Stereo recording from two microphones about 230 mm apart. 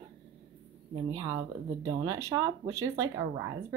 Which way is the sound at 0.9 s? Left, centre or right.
Right.